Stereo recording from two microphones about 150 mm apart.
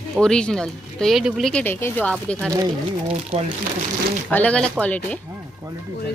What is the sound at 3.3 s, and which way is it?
Speech, 45° right (ahead or behind).